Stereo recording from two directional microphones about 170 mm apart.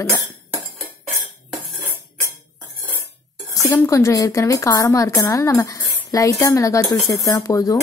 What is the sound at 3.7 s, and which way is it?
A woman's voice, 20° left (ahead or behind).